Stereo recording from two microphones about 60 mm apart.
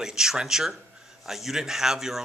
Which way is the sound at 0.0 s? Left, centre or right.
Centre.